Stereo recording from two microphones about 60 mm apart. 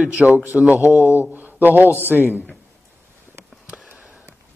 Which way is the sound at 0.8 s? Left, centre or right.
Left.